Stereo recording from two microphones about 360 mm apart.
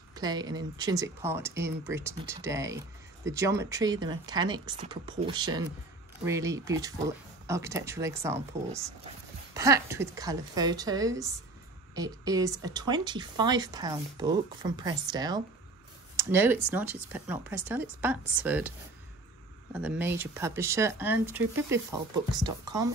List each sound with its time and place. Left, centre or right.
0.1 s a woman's voice: centre
19.7 s a woman's voice: centre